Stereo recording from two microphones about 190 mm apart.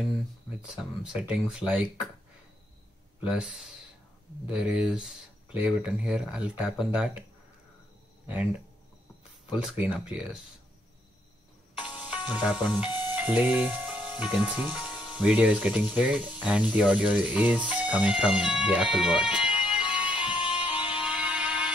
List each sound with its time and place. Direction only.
1.0 s speech: 5° right (ahead or behind)
3.3 s speech: centre (ahead or behind)
8.3 s speech: 5° right (ahead or behind)
12.0 s music: 5° right (ahead or behind)
12.4 s speech: centre (ahead or behind)
19.7 s music: 5° right (ahead or behind)
20.2 s music: 25° left (ahead or behind)
20.9 s music: 5° right (ahead or behind)